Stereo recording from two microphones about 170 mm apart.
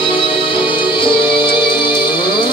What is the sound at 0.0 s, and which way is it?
Music, 30° left (ahead or behind).